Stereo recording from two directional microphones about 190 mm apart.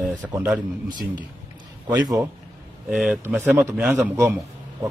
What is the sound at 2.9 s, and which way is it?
Speech, 5° right (ahead or behind).